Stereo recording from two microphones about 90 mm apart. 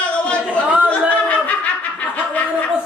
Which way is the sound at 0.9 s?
15° left (ahead or behind).